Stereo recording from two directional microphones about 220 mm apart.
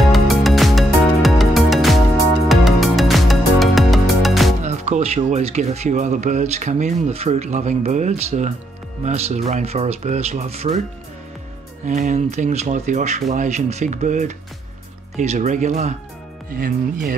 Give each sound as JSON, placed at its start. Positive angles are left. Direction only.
{"t": 0.1, "sound": "music", "side_deg": 0}
{"t": 4.6, "sound": "speech", "side_deg": -30}
{"t": 11.8, "sound": "speech", "side_deg": -35}